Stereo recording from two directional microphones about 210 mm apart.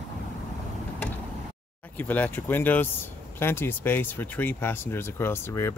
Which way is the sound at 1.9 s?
10° left (ahead or behind).